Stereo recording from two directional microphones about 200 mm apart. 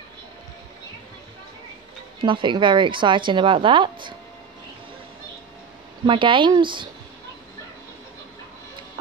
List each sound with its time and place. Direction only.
2.2 s a woman's voice: 25° right (ahead or behind)
6.0 s a woman's voice: 25° right (ahead or behind)